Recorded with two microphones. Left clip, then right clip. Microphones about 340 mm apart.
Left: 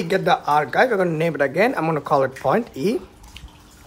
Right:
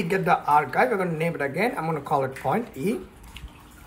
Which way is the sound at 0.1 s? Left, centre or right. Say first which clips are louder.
Left 2 dB; centre.